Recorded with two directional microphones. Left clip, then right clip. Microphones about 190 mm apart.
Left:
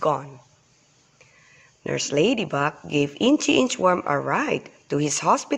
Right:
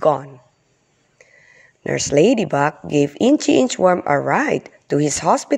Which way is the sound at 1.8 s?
30° right (ahead or behind).